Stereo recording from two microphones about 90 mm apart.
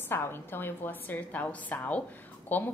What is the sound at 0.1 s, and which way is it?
A woman's voice, 25° left (ahead or behind).